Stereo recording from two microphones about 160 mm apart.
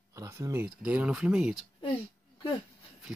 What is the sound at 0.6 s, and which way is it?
Speech, 5° right (ahead or behind).